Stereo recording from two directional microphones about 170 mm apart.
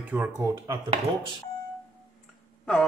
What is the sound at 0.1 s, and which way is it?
Speech, 15° right (ahead or behind).